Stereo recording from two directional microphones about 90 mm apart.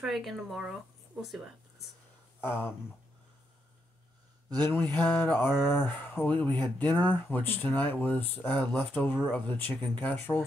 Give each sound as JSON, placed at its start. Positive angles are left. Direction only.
{"t": 0.0, "sound": "speech", "side_deg": 0}
{"t": 2.4, "sound": "speech", "side_deg": 25}
{"t": 4.6, "sound": "speech", "side_deg": 25}